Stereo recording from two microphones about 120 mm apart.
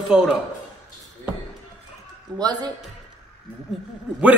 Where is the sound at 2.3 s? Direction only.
35° right (ahead or behind).